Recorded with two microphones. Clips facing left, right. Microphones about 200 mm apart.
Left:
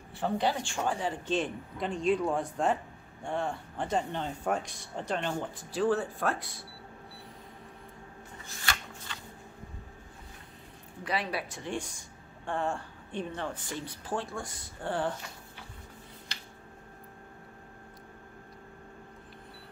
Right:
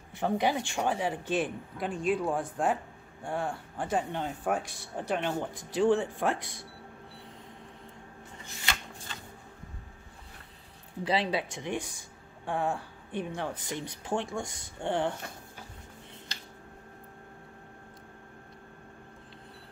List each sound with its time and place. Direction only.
0.2 s a woman's voice: 15° right (ahead or behind)
11.1 s a woman's voice: 25° right (ahead or behind)